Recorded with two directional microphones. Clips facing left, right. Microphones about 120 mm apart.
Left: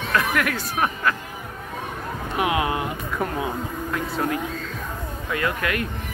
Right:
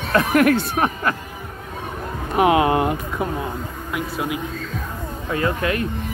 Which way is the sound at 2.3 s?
35° right (ahead or behind).